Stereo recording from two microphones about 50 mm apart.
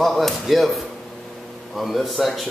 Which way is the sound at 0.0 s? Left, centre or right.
Centre.